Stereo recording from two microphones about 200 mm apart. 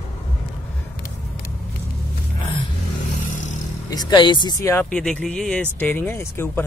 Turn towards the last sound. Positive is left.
turn(degrees=10)  # may be behind; listen again after turning